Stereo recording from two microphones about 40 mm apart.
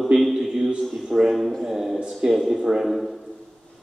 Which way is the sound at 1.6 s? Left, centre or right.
Centre.